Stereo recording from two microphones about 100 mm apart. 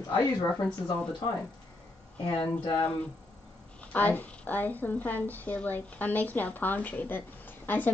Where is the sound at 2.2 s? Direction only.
45° left (ahead or behind).